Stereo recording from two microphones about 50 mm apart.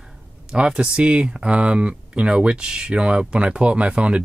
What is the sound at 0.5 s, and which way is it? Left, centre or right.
Speech, centre.